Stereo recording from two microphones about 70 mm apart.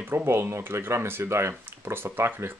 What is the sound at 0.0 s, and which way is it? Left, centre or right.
Speech, right.